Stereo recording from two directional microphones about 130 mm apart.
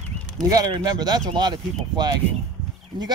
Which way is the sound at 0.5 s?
30° right (ahead or behind).